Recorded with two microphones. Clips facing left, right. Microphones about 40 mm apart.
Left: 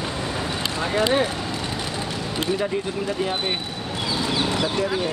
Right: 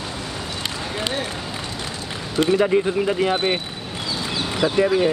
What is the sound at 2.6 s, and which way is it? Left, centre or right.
Speech, right.